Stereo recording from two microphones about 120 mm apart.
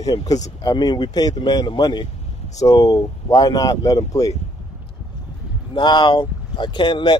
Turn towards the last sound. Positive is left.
turn(degrees=40)  # may be behind; listen again after turning